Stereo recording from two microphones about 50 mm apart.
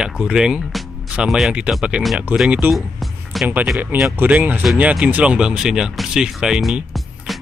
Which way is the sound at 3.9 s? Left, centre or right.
Right.